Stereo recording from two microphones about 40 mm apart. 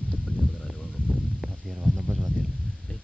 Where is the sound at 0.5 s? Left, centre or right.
Centre.